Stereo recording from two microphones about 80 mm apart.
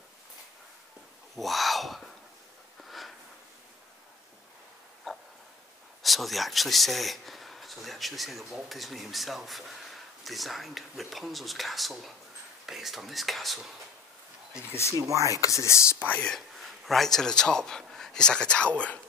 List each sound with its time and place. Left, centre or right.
1.3 s speech: centre
2.8 s a sound: centre
5.1 s dog: centre
6.0 s speech: centre
14.7 s speech: left
15.0 s speech: right
15.4 s speech: left
16.0 s speech: centre
16.3 s speech: centre